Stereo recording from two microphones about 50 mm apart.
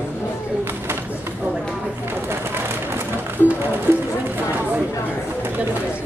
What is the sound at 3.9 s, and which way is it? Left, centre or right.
Run, right.